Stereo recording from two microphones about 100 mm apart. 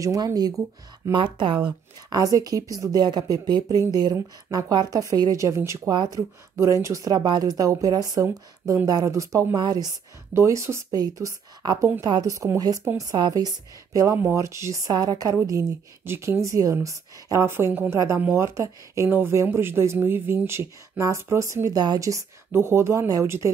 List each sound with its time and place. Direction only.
0.0 s speech: 35° right (ahead or behind)
1.1 s speech: 55° right (ahead or behind)
2.0 s speech: 35° right (ahead or behind)
6.5 s speech: 30° right (ahead or behind)
9.6 s speech: 45° right (ahead or behind)
10.3 s speech: 30° right (ahead or behind)
16.0 s speech: 25° right (ahead or behind)